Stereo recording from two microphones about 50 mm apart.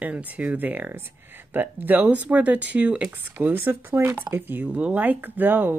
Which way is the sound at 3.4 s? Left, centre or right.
Right.